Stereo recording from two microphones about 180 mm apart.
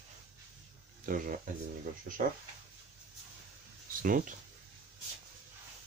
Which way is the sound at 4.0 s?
50° right (ahead or behind).